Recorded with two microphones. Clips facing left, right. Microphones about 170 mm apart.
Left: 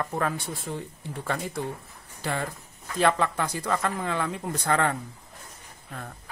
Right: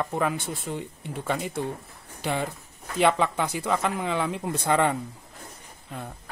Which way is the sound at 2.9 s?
15° right (ahead or behind).